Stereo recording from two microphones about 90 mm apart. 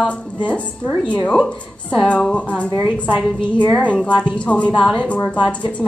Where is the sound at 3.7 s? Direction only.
10° left (ahead or behind).